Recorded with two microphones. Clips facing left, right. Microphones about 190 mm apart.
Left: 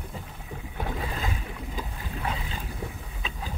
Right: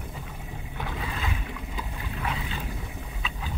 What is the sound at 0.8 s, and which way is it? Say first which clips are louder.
Boat: left 2 dB; 40° left (ahead or behind).